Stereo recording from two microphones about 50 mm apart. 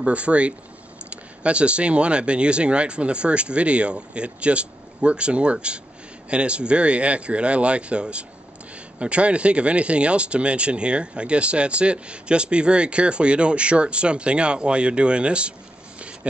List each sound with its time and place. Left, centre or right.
0.0 s speech: right